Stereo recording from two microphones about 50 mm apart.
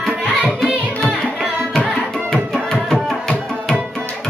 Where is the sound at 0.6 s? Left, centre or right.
Centre.